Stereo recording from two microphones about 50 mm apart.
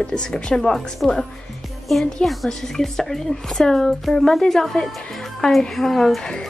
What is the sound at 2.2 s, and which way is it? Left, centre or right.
A woman's voice, centre.